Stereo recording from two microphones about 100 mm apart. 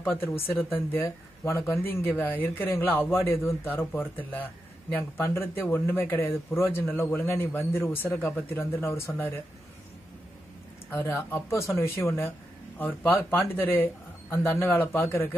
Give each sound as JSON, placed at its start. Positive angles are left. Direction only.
{"t": 0.0, "sound": "speech", "side_deg": 20}
{"t": 10.9, "sound": "speech", "side_deg": 25}